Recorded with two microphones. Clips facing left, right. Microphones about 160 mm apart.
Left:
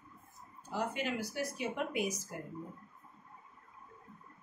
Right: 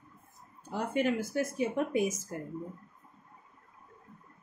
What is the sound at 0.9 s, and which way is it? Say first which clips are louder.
Speech: right 8 dB; 50° right (ahead or behind).